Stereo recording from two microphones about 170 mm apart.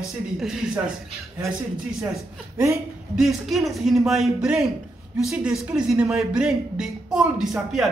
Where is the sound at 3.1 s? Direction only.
Centre (ahead or behind).